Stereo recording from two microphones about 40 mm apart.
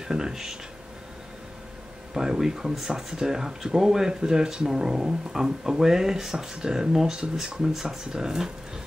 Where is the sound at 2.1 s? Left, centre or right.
Centre.